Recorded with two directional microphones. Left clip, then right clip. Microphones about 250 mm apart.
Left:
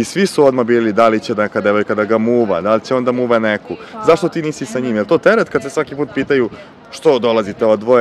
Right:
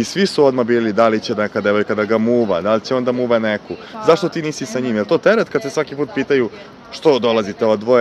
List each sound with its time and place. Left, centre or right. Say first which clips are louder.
0.0 s speech: left 2 dB; centre